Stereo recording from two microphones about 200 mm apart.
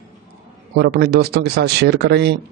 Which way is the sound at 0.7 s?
50° right (ahead or behind).